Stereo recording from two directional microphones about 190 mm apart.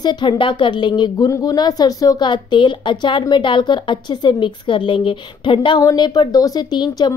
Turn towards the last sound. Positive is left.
turn(degrees=25)  # may be behind; listen again after turning